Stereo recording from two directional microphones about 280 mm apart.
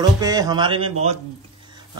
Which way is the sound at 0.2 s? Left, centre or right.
Centre.